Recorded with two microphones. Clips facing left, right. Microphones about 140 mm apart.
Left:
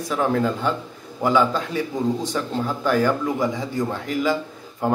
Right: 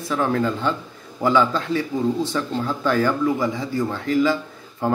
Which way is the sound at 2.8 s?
15° left (ahead or behind).